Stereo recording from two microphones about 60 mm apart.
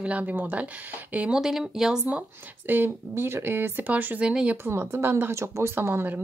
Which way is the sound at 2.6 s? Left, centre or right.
Right.